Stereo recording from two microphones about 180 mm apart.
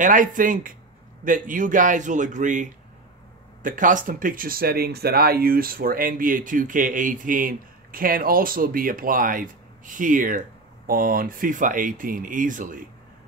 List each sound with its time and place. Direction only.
0.0 s speech: 45° right (ahead or behind)